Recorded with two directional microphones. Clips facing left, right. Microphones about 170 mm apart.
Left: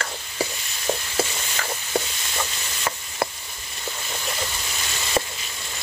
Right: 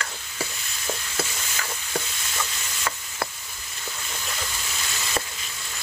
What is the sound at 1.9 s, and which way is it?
Stir, 25° left (ahead or behind).